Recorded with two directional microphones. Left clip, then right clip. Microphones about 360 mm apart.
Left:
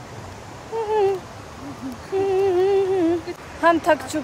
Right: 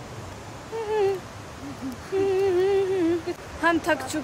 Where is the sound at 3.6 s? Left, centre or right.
Centre.